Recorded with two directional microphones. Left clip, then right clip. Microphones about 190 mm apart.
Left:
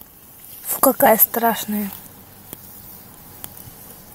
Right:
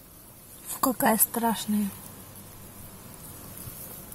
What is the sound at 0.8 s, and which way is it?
Speech, 15° left (ahead or behind).